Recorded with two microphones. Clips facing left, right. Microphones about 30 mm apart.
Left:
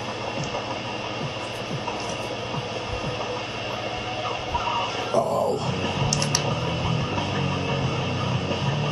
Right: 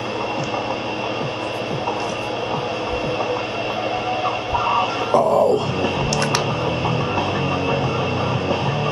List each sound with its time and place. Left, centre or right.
4.6 s music: right